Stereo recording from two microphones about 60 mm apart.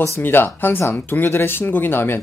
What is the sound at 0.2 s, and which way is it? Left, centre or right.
Speech, left.